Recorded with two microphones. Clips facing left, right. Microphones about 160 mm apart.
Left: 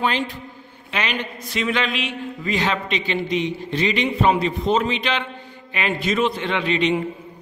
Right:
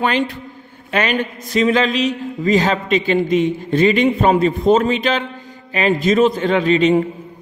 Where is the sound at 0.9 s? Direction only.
50° right (ahead or behind).